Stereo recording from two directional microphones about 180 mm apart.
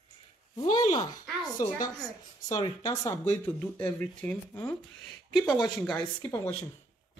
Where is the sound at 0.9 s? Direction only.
20° left (ahead or behind); by 6.3 s 5° left (ahead or behind).